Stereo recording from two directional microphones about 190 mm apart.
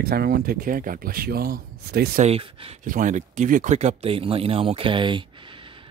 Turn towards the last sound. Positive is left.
turn(degrees=-25)  # may be behind; listen again after turning